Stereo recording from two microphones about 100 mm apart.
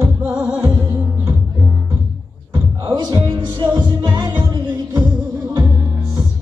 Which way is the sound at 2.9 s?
45° right (ahead or behind).